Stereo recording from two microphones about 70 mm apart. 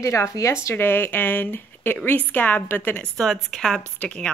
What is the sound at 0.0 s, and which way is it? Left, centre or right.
Speech, left.